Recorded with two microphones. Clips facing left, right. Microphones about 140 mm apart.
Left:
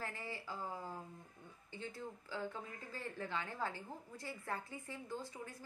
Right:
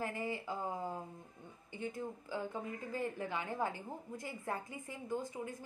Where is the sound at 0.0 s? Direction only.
15° right (ahead or behind).